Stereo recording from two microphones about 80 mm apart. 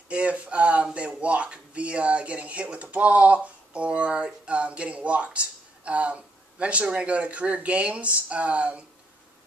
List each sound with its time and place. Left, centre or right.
0.1 s speech: centre